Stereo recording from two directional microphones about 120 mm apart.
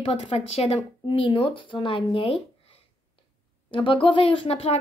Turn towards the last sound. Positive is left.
turn(degrees=55)  # may be behind; listen again after turning